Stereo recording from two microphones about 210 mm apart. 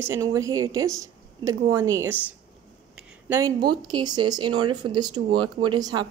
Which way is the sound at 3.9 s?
20° right (ahead or behind).